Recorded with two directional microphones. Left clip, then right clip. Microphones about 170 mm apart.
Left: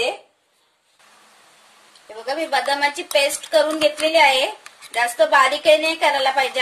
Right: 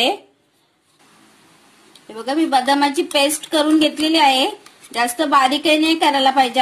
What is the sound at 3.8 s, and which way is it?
A woman's voice, 55° right (ahead or behind).